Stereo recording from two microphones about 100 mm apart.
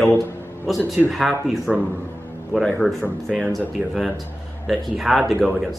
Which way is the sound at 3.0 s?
10° left (ahead or behind).